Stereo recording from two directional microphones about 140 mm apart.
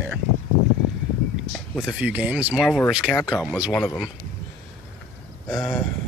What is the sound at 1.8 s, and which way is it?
Speech, 10° right (ahead or behind).